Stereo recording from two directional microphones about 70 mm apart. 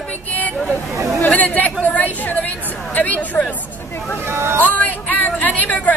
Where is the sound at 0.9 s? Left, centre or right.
Right.